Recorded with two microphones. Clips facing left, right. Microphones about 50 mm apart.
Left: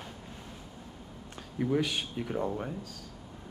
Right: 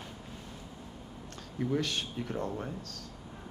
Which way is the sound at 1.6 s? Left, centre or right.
Centre.